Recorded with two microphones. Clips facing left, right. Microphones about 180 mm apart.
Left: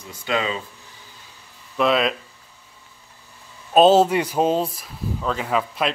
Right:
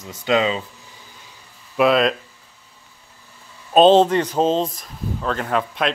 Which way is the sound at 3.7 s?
5° left (ahead or behind).